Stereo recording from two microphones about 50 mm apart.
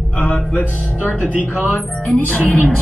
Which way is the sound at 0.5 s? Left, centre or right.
Left.